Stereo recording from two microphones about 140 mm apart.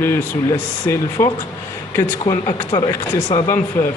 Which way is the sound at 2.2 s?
45° left (ahead or behind).